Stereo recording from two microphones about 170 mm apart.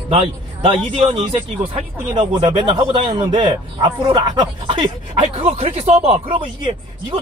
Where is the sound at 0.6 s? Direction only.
35° right (ahead or behind).